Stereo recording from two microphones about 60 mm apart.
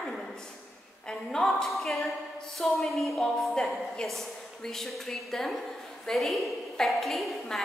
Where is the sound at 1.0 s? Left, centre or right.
Centre.